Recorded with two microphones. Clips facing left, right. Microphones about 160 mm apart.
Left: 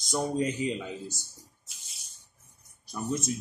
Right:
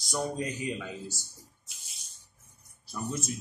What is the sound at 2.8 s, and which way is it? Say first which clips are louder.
Speech: left 4 dB; 20° left (ahead or behind).